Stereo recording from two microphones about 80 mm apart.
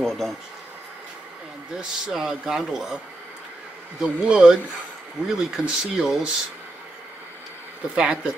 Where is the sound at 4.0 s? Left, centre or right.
Centre.